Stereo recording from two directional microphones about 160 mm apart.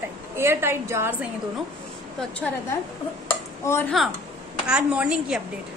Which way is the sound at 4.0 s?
Centre (ahead or behind).